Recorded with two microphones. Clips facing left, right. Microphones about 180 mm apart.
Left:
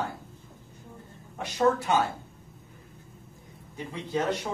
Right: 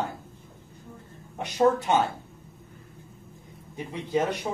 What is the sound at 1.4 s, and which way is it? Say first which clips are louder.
Speech: right 2 dB; 20° right (ahead or behind).